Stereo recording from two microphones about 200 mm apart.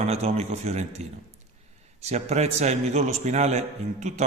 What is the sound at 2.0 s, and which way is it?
A man's voice, 35° right (ahead or behind).